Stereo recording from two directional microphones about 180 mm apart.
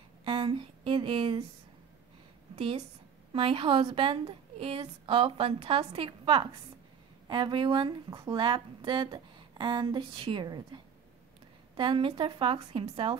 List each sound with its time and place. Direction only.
0.2 s speech: 30° right (ahead or behind)
2.5 s a woman's voice: 35° right (ahead or behind)